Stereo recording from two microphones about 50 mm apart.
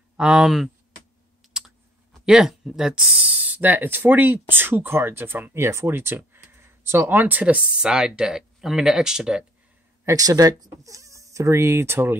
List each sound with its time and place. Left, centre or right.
0.2 s speech: centre
2.2 s speech: centre; by 5.9 s right
5.9 s speech: right
6.3 s a sound: right
7.2 s speech: right
7.4 s speech: right
10.8 s speech: right